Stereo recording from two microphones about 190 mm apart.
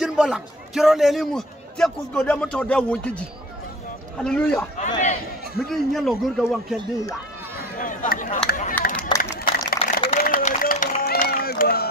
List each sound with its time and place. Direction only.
0.0 s a man's voice: 5° right (ahead or behind)
4.7 s a man's voice: 40° left (ahead or behind)
5.7 s a man's voice: centre (ahead or behind)
7.5 s speech: 45° left (ahead or behind)
9.2 s a sound: 55° left (ahead or behind)